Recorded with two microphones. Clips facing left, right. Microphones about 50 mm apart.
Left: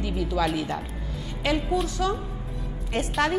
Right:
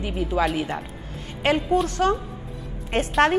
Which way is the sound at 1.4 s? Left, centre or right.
Right.